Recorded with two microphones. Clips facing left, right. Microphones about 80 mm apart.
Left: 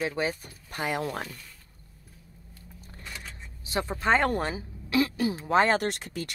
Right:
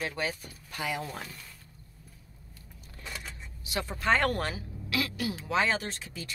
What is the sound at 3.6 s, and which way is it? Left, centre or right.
Speech, left.